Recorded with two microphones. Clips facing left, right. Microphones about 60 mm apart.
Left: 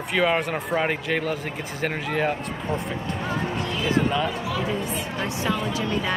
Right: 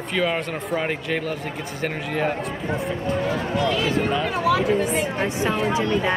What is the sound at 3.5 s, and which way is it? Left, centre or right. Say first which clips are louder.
Speech: right 5 dB; right.